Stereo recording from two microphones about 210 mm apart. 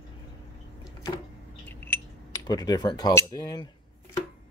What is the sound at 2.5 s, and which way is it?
Speech, 20° left (ahead or behind).